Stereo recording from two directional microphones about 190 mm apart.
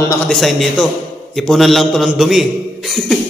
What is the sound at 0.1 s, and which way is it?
A man's voice, 5° left (ahead or behind).